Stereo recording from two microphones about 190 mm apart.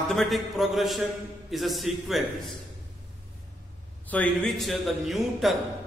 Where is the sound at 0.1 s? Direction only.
Centre (ahead or behind).